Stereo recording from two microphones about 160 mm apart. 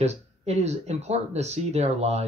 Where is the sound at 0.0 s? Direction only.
45° right (ahead or behind).